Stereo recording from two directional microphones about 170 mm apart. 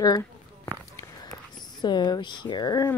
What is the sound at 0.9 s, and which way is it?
Speech, 20° left (ahead or behind).